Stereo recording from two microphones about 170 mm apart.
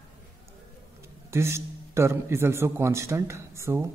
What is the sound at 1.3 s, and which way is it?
Speech, 15° right (ahead or behind).